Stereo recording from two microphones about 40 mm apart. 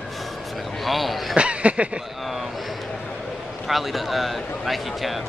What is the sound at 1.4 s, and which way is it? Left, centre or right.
Speech, right.